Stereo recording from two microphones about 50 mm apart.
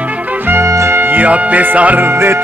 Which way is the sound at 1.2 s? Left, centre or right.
Right.